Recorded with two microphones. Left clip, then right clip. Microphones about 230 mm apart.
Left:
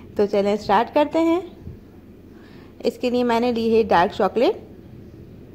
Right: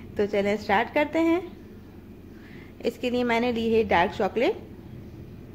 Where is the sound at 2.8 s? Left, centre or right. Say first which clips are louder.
Left 5 dB; centre.